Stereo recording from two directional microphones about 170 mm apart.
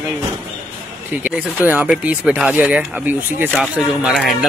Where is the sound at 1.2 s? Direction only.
10° right (ahead or behind).